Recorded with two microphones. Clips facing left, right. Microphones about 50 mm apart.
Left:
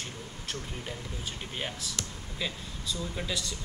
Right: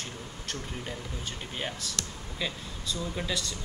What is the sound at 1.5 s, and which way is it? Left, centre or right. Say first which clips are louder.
Speech: right 1 dB; centre.